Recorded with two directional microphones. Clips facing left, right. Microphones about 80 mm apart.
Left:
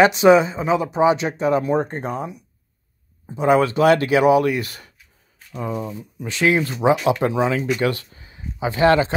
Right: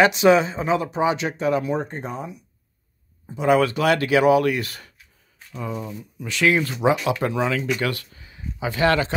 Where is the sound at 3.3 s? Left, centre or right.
Left.